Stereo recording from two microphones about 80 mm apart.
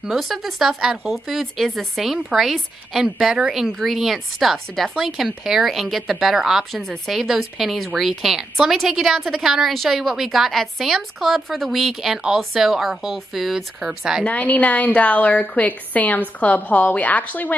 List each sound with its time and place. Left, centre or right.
0.0 s a woman's voice: centre
14.2 s a woman's voice: centre